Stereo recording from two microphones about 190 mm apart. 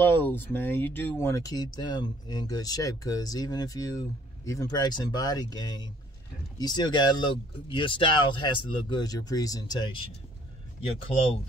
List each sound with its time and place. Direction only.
0.0 s speech: 10° left (ahead or behind)